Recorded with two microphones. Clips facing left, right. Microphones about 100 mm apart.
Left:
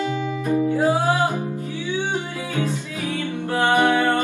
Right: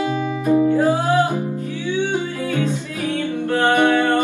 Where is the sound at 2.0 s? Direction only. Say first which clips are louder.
Right 4 dB; 15° left (ahead or behind).